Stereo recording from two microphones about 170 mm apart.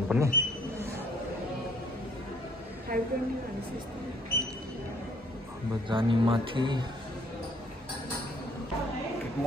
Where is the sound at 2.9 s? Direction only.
55° right (ahead or behind).